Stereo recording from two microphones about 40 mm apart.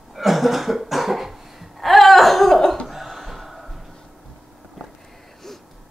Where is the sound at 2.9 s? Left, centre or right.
Centre.